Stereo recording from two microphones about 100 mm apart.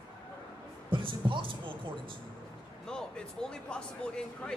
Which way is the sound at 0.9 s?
55° right (ahead or behind).